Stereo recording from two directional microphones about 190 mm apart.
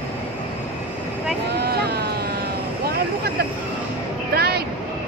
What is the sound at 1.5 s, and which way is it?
Vehicle, 60° right (ahead or behind).